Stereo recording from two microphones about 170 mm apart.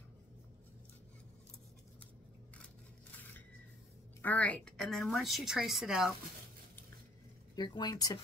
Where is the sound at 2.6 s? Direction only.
10° left (ahead or behind).